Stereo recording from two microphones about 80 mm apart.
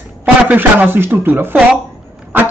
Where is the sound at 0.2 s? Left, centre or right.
Right.